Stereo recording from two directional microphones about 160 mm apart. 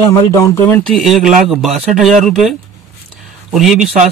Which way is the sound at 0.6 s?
5° left (ahead or behind).